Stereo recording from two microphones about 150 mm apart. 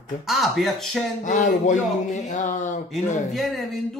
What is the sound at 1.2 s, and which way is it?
Speech, 55° left (ahead or behind).